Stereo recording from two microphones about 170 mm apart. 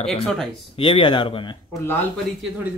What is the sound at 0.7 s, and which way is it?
Speech, 30° left (ahead or behind).